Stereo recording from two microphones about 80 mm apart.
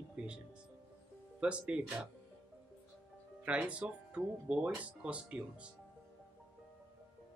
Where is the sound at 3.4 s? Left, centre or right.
Centre.